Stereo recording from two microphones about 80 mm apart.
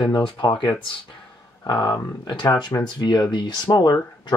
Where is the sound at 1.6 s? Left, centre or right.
Left.